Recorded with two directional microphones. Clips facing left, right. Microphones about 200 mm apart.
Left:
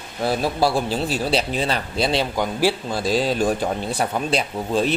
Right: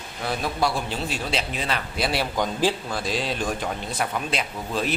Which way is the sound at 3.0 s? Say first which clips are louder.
Left 8 dB; 40° left (ahead or behind).